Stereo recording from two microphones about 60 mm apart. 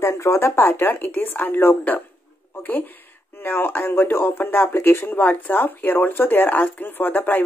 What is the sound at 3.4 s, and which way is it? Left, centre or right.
Speech, left.